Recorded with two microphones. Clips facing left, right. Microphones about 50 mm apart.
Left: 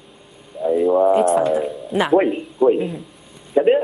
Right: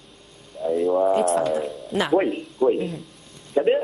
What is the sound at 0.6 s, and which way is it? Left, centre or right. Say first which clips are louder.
Speech: left 5 dB; centre.